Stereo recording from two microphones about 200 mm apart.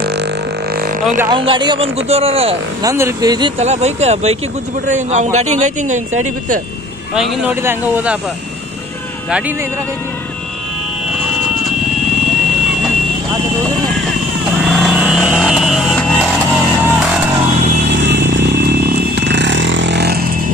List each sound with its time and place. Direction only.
0.0 s music: 55° right (ahead or behind)
0.7 s vehicle: 45° right (ahead or behind)
1.3 s speech: 25° right (ahead or behind)
2.8 s a man's voice: 15° right (ahead or behind); by 6.6 s 40° right (ahead or behind)
7.2 s speech: 10° right (ahead or behind)
14.6 s vehicle: 5° right (ahead or behind)
17.8 s vehicle: 60° right (ahead or behind)